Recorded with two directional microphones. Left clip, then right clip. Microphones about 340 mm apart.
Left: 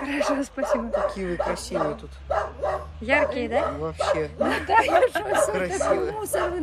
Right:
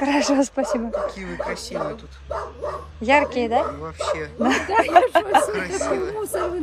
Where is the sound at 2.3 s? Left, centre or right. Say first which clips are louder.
Left 3 dB; left.